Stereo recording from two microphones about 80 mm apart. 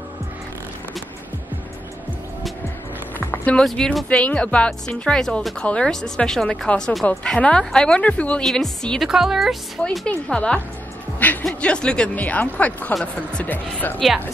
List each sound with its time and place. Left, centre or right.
3.2 s music: left
3.6 s a woman's voice: centre
7.1 s a woman's voice: centre
9.1 s a woman's voice: centre
10.0 s speech: centre
11.2 s music: centre
11.6 s speech: centre